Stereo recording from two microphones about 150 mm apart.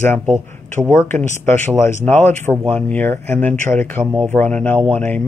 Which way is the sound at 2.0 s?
10° left (ahead or behind).